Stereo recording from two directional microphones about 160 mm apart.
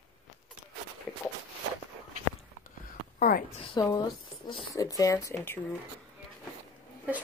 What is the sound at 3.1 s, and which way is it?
Speech, 60° left (ahead or behind).